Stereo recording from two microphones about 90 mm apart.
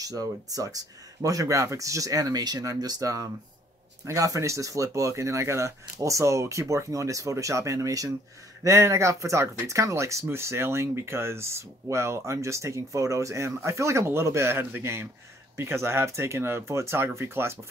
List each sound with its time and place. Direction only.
0.0 s speech: 40° right (ahead or behind)